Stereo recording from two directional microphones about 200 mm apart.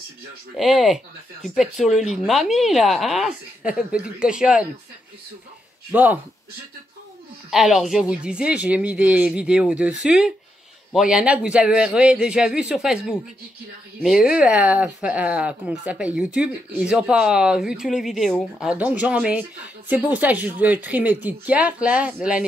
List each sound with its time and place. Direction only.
0.6 s speech: centre (ahead or behind)
5.9 s speech: 10° right (ahead or behind)
7.5 s speech: centre (ahead or behind)